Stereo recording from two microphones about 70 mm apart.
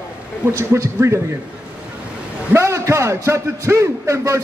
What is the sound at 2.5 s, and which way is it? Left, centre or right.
A man's voice, right.